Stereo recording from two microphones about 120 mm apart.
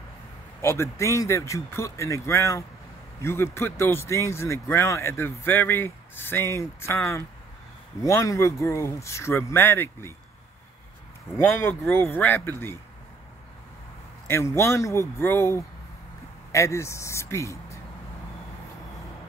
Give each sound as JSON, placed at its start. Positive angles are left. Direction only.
{"t": 0.6, "sound": "speech", "side_deg": 20}
{"t": 8.0, "sound": "speech", "side_deg": 25}
{"t": 11.3, "sound": "speech", "side_deg": 20}
{"t": 14.2, "sound": "speech", "side_deg": 20}